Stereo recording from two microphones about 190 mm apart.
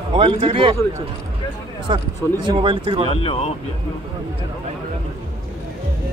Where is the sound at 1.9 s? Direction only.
25° right (ahead or behind).